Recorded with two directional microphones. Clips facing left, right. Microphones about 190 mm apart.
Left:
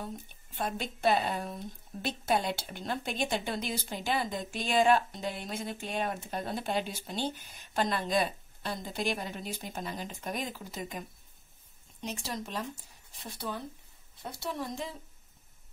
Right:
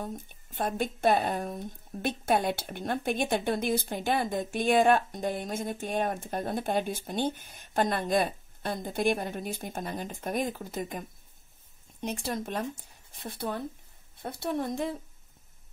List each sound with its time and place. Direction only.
0.0 s a woman's voice: 50° right (ahead or behind)